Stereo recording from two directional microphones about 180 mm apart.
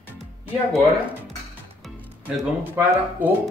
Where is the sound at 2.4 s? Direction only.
10° right (ahead or behind).